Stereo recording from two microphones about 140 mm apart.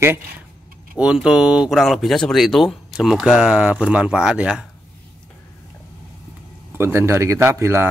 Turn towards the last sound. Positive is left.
turn(degrees=-20)  # may be behind; listen again after turning